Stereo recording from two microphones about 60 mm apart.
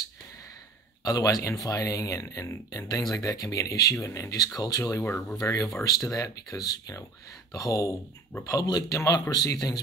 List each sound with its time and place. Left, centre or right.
1.0 s a man's voice: left
1.4 s speech: left
2.9 s a man's voice: left
3.9 s speech: left
4.6 s a man's voice: left